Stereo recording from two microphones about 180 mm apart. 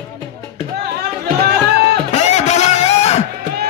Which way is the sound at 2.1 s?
40° left (ahead or behind).